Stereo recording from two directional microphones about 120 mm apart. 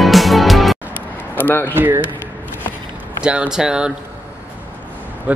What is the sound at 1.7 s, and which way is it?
Speech, 15° right (ahead or behind).